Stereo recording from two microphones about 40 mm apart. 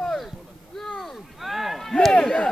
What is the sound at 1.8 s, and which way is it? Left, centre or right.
Speech, centre.